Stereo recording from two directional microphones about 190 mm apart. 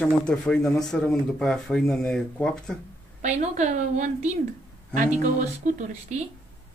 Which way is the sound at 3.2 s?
35° right (ahead or behind).